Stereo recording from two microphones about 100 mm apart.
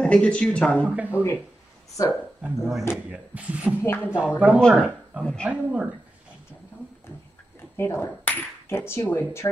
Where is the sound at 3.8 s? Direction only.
20° left (ahead or behind).